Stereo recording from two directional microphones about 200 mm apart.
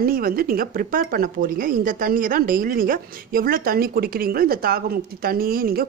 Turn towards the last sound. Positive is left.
turn(degrees=-45)  # may be behind; listen again after turning